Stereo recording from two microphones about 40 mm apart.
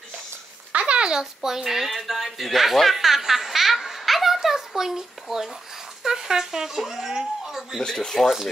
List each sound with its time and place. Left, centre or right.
0.7 s speech: right; by 7.8 s centre
7.8 s speech: centre
8.1 s speech: centre